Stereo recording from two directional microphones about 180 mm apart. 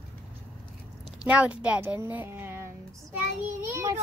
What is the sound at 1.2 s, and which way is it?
A child's voice, 5° right (ahead or behind).